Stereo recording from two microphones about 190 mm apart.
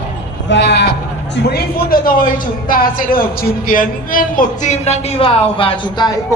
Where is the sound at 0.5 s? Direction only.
65° left (ahead or behind).